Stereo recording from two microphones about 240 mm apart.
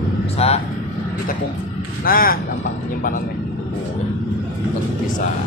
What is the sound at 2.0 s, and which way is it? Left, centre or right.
Speech, left.